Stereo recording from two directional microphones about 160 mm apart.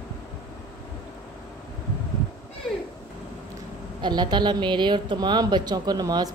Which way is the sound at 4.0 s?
25° right (ahead or behind).